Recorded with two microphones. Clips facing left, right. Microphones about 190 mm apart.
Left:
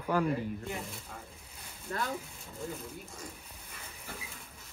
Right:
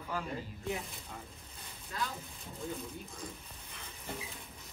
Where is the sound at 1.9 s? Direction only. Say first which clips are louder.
Left 3 dB; 55° left (ahead or behind).